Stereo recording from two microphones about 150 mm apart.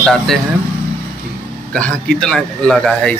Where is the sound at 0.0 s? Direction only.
5° left (ahead or behind).